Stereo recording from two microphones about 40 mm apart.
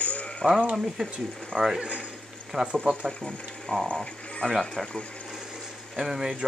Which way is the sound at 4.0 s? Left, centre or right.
Left.